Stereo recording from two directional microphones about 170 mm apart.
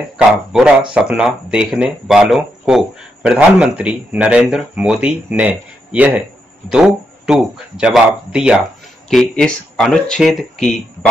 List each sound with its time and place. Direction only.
0.5 s speech: 5° right (ahead or behind)